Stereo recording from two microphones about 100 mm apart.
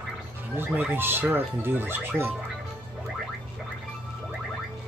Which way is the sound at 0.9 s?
20° right (ahead or behind).